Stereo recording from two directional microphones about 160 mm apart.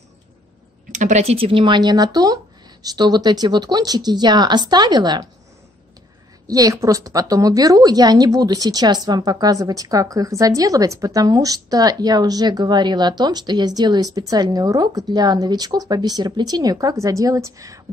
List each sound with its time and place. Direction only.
0.9 s a woman's voice: 50° right (ahead or behind); by 5.2 s 25° right (ahead or behind)
6.4 s a woman's voice: 20° right (ahead or behind)